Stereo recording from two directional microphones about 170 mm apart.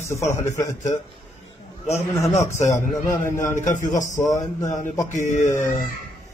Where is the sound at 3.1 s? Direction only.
15° left (ahead or behind).